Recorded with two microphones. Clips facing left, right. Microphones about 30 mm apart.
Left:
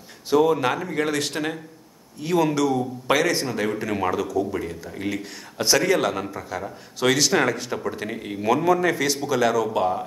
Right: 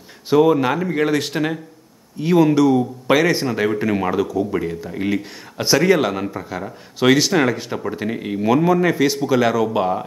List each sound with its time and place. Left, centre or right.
0.3 s a man's voice: centre